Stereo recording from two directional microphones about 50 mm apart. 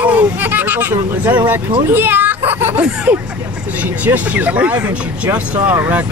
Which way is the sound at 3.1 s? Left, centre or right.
Right.